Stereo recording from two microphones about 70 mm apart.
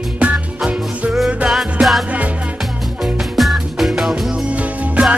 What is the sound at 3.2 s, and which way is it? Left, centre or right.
Music, centre.